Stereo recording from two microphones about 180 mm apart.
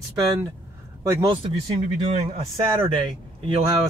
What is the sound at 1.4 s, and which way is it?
Speech, 30° right (ahead or behind).